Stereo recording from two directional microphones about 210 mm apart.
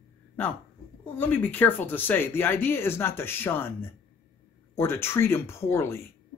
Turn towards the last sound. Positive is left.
turn(degrees=10)  # may be behind; listen again after turning